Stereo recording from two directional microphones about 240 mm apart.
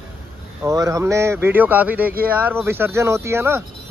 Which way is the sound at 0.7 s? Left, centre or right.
Centre.